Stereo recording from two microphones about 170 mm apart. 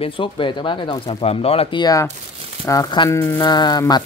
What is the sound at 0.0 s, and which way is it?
Speech, 30° left (ahead or behind).